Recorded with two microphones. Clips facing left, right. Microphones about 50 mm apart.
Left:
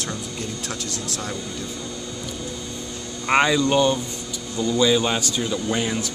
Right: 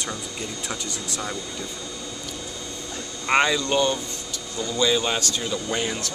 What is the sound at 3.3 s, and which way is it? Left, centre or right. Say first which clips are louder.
Speech: left 3 dB; centre.